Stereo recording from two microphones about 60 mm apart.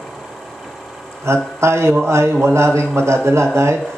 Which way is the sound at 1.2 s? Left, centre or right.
Right.